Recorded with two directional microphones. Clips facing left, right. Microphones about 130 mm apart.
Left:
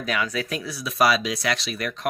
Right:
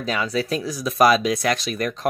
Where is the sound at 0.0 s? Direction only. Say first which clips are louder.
Right 3 dB; 30° right (ahead or behind).